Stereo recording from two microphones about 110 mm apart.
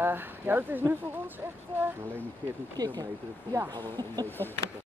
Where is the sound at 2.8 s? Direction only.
40° right (ahead or behind).